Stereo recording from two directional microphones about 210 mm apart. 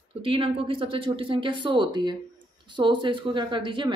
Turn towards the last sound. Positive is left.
turn(degrees=-25)  # may be behind; listen again after turning